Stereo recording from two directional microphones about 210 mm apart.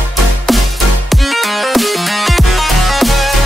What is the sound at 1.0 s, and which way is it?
Music, centre (ahead or behind).